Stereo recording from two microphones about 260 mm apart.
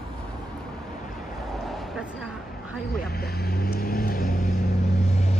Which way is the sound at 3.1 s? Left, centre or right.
Left.